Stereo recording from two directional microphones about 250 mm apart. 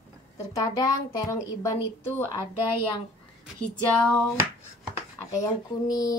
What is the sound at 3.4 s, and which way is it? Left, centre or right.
Speech, centre.